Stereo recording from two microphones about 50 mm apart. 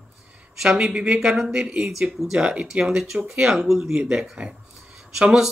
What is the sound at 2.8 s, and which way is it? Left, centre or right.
Speech, centre.